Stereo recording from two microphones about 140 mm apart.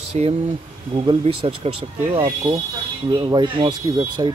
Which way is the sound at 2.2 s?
25° right (ahead or behind).